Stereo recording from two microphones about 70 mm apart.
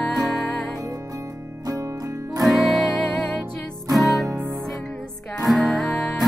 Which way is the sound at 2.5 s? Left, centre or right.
Centre.